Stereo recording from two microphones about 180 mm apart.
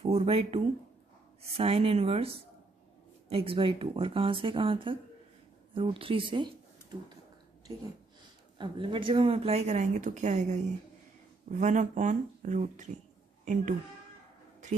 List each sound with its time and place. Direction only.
0.0 s speech: 35° right (ahead or behind)
8.5 s speech: 30° right (ahead or behind)